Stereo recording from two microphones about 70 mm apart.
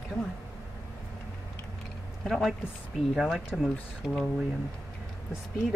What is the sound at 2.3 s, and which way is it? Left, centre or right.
Speech, centre.